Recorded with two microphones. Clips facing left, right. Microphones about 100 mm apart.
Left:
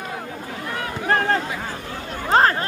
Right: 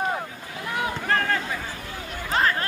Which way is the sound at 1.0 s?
35° left (ahead or behind).